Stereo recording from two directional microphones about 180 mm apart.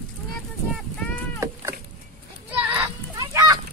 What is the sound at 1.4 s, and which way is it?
Cat, 15° right (ahead or behind).